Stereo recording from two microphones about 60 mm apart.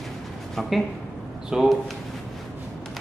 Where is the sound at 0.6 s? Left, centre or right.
Centre.